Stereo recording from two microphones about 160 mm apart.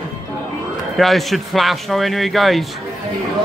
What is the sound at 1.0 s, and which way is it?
Speech, centre (ahead or behind).